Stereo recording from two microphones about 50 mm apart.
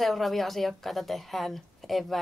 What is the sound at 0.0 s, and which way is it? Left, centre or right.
A woman's voice, centre.